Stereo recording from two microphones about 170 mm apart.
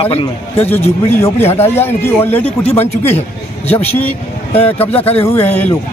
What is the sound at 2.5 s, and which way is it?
Speech, 35° left (ahead or behind).